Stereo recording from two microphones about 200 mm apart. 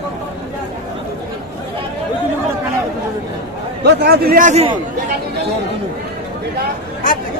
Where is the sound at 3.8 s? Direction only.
50° right (ahead or behind); by 4.7 s 35° right (ahead or behind).